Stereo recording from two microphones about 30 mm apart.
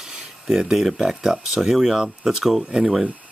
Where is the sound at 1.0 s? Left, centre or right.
Right.